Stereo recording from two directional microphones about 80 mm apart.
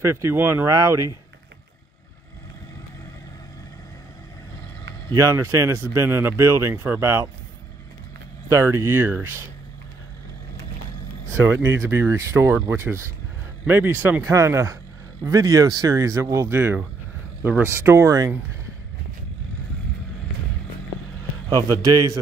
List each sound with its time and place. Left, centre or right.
0.0 s speech: right
0.7 s a man's voice: right
5.1 s speech: right
8.5 s speech: right
11.6 s speech: right
21.8 s a man's voice: right